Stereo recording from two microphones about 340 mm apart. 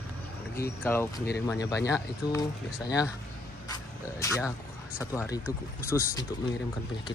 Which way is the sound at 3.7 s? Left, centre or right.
Centre.